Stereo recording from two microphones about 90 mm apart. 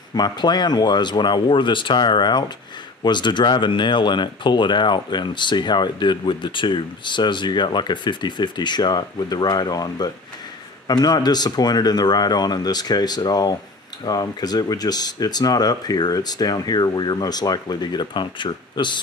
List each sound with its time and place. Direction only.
0.1 s speech: 50° left (ahead or behind)